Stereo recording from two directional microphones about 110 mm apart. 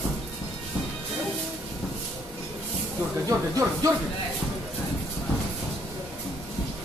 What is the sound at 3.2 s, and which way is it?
Speech, 30° right (ahead or behind).